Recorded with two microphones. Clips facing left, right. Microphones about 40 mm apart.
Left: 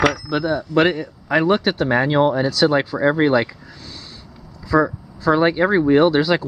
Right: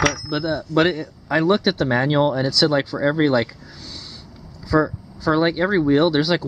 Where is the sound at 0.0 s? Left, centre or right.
Centre.